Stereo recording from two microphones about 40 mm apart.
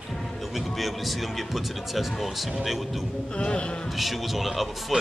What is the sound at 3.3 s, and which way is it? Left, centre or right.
Speech, left.